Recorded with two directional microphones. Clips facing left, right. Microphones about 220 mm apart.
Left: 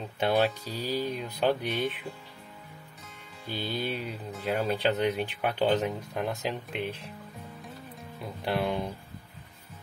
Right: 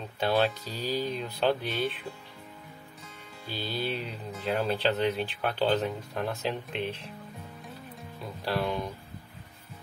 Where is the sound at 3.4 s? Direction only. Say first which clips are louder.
Left 1 dB; 15° left (ahead or behind).